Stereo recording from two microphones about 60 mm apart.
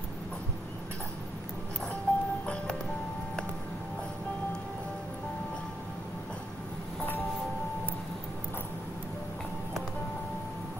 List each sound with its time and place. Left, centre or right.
2.1 s music: left